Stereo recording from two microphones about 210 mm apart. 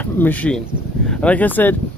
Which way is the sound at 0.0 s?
10° left (ahead or behind).